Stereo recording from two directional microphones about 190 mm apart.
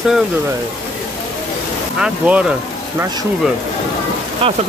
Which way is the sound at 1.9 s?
5° right (ahead or behind).